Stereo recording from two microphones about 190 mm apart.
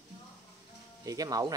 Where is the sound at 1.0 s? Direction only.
20° right (ahead or behind).